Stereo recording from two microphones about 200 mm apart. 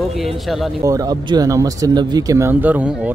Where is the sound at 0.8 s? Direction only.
20° right (ahead or behind).